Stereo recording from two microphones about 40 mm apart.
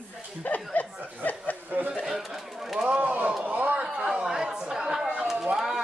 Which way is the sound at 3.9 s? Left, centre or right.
Right.